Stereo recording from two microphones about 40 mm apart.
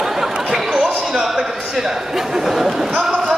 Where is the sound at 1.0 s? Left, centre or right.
Centre.